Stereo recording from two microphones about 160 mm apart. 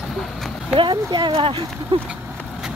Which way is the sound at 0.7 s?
30° right (ahead or behind).